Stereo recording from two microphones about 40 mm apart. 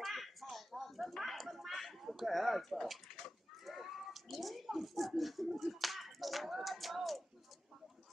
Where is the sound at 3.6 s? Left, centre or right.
Centre.